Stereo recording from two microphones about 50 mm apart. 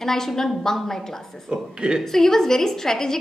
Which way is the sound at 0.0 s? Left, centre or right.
Centre.